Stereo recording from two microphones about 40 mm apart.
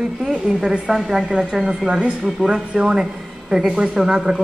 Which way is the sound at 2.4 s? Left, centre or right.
Right.